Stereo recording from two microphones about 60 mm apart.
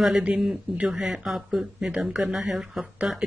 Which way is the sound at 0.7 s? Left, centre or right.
Centre.